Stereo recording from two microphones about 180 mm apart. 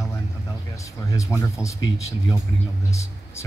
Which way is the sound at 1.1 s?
15° left (ahead or behind).